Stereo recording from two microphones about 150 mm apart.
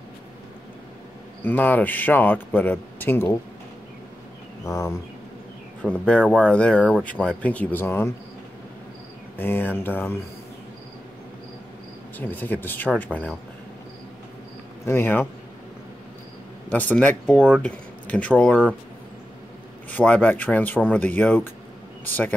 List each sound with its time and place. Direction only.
1.4 s speech: 10° left (ahead or behind)
4.6 s a sound: 20° left (ahead or behind)
5.8 s speech: 10° left (ahead or behind)
9.4 s speech: 15° left (ahead or behind)
12.2 s speech: 10° left (ahead or behind)
14.9 s speech: 15° left (ahead or behind)
16.6 s speech: 10° left (ahead or behind)
19.9 s speech: 10° left (ahead or behind)